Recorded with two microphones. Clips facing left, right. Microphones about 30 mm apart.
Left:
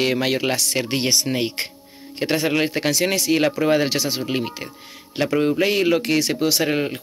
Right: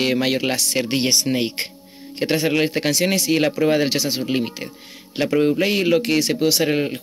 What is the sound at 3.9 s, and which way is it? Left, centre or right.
Speech, right.